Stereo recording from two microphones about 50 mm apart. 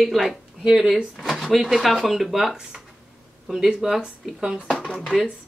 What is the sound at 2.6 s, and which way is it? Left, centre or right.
Speech, centre.